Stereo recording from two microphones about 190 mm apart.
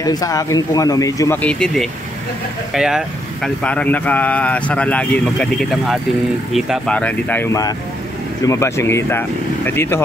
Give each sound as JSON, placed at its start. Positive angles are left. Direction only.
{"t": 0.0, "sound": "speech", "side_deg": 20}